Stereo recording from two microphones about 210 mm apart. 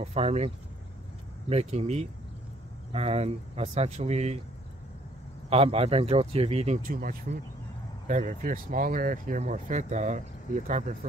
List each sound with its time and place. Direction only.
0.0 s speech: 30° right (ahead or behind)
1.5 s speech: 30° right (ahead or behind)
5.5 s speech: 30° right (ahead or behind)